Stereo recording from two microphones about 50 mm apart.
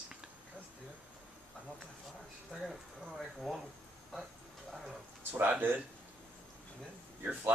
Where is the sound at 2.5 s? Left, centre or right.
Centre.